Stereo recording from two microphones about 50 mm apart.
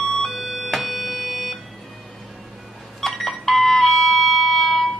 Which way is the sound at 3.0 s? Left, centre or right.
Centre.